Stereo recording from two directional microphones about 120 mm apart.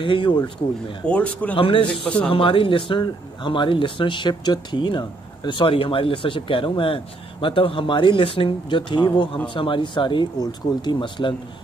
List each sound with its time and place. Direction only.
0.0 s speech: 45° left (ahead or behind)
1.0 s a man's voice: 10° left (ahead or behind)
1.6 s speech: 45° left (ahead or behind)
2.0 s a man's voice: 10° left (ahead or behind)
2.3 s speech: 45° left (ahead or behind)